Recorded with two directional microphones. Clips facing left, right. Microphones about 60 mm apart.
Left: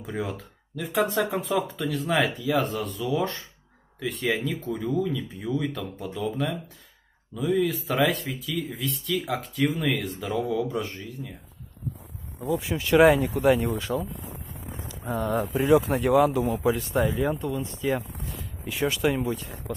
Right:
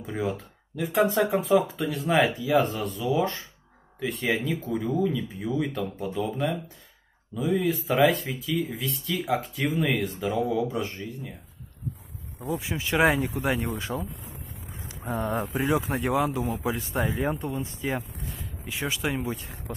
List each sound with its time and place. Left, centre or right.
0.0 s speech: centre
12.4 s speech: centre
14.9 s speech: right
15.7 s speech: centre
17.1 s speech: right
18.3 s speech: centre